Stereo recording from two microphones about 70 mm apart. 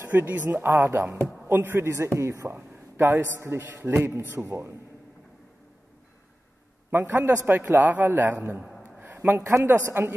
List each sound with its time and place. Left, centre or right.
0.0 s speech: right
1.9 s a man's voice: right
3.9 s a man's voice: right
4.3 s a man's voice: right
6.9 s a man's voice: right
8.8 s a sound: right
9.4 s speech: right